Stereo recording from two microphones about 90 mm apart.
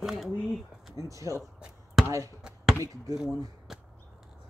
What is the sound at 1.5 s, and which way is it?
Basketball bounce, 10° right (ahead or behind).